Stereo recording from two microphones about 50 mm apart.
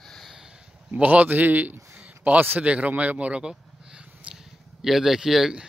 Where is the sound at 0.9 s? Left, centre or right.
Right.